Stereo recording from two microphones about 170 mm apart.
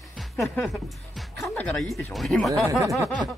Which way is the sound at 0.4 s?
Centre (ahead or behind).